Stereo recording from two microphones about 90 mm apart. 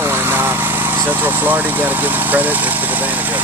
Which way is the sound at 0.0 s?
25° right (ahead or behind).